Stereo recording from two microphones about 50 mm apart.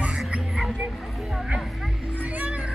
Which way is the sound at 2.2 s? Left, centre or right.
Right.